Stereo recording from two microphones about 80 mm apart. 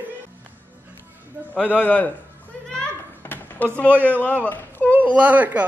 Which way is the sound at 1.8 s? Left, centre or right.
Centre.